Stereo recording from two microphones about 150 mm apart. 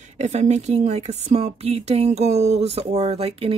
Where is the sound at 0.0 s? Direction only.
50° right (ahead or behind).